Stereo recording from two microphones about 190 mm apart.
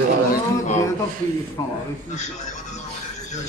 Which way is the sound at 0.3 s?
35° left (ahead or behind).